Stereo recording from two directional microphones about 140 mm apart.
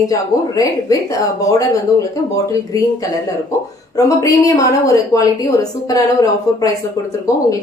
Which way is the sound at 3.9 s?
25° left (ahead or behind).